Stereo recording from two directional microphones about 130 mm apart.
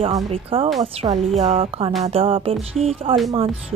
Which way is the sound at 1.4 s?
50° right (ahead or behind).